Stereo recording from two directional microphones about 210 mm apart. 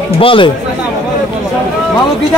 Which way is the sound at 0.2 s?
25° left (ahead or behind).